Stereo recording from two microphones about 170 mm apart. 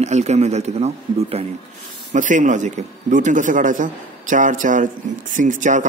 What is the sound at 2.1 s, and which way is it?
A man's voice, 50° right (ahead or behind).